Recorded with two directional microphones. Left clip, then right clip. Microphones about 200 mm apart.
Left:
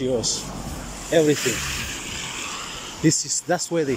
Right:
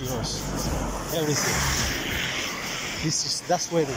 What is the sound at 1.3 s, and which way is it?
Speech, centre (ahead or behind).